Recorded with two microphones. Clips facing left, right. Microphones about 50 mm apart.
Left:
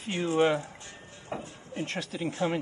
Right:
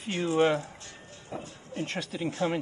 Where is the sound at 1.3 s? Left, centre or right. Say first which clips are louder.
Left 2 dB; left.